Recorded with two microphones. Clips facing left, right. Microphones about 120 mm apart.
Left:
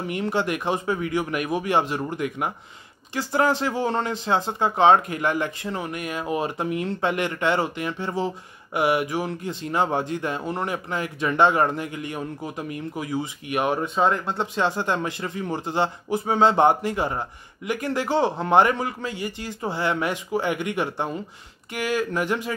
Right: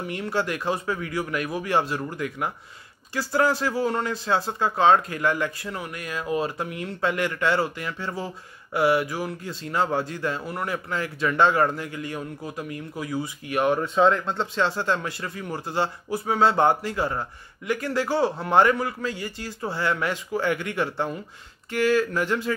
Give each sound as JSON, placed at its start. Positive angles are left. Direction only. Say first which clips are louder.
{"t": 0.1, "sound": "speech", "louder": "left 3 dB", "side_deg": 20}